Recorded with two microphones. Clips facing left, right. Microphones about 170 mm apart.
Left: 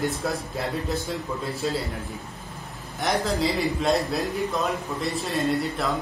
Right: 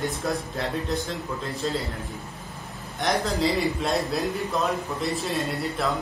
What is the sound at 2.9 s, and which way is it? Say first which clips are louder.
A man's voice: even; centre (ahead or behind).